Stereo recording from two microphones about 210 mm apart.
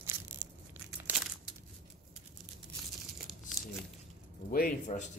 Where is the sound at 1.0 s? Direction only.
5° right (ahead or behind).